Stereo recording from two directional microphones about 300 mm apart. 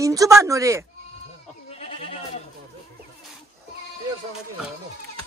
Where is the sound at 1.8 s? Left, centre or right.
Centre.